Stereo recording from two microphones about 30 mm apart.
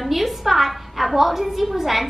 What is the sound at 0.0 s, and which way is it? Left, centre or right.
A woman's voice, centre.